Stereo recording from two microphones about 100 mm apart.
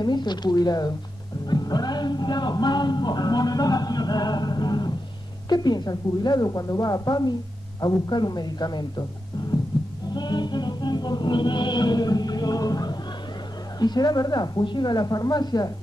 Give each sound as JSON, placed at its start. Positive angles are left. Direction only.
{"t": 0.0, "sound": "a woman's voice", "side_deg": 45}
{"t": 10.1, "sound": "music", "side_deg": 45}
{"t": 13.7, "sound": "speech", "side_deg": 45}